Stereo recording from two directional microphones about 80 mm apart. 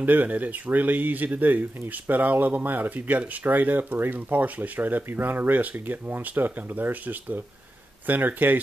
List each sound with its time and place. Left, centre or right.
0.0 s speech: right